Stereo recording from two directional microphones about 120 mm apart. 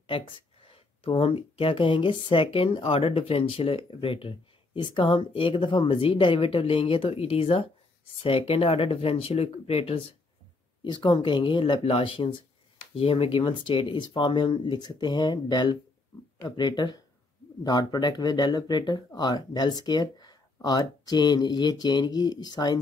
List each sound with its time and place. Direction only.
0.0 s speech: 45° left (ahead or behind)